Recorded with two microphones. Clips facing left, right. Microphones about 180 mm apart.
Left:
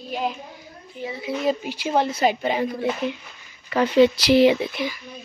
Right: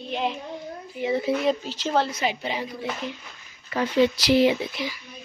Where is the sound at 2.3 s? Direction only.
50° left (ahead or behind).